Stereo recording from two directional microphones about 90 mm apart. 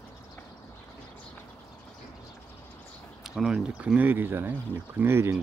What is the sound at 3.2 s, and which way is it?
Speech, 5° right (ahead or behind).